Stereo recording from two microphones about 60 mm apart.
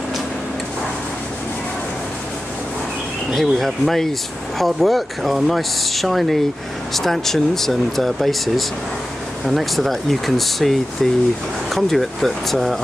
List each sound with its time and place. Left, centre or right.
3.3 s speech: centre